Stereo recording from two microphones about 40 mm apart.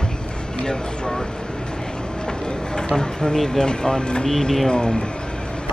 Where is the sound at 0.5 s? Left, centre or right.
Left.